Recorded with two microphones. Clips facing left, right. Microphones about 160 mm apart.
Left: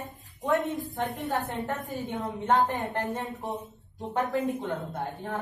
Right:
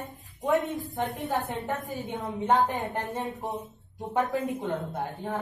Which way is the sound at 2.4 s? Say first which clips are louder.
Right 1 dB; 20° right (ahead or behind).